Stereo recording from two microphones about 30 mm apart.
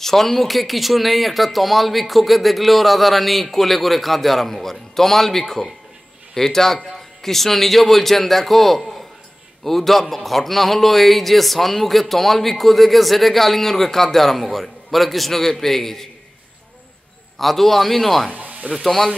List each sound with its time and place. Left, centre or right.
0.0 s a man's voice: centre
17.4 s speech: centre
18.3 s speech: right